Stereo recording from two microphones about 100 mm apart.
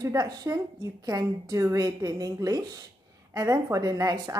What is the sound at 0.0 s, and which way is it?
A woman's voice, 35° right (ahead or behind).